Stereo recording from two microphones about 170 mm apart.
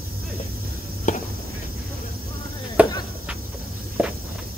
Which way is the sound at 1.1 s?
45° left (ahead or behind).